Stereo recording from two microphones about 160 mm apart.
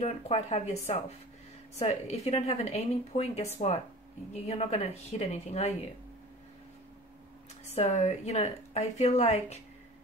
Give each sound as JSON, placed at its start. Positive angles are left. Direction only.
{"t": 0.0, "sound": "a woman's voice", "side_deg": 40}
{"t": 7.7, "sound": "speech", "side_deg": 45}